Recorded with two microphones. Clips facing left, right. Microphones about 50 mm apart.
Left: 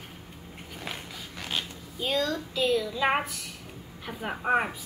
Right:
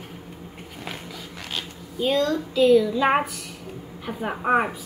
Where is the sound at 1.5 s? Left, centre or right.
Centre.